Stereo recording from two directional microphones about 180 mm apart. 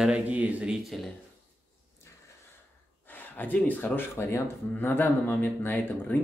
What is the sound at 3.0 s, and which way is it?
Speech, 10° left (ahead or behind).